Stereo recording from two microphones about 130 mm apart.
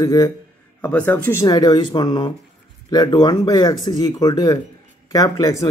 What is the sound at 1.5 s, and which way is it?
A man's voice, 30° left (ahead or behind).